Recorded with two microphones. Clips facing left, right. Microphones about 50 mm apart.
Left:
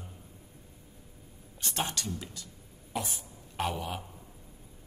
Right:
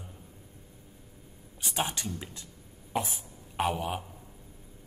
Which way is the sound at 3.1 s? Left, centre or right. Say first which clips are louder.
Right 3 dB; centre.